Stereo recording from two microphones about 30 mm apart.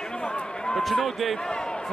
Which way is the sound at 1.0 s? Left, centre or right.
Centre.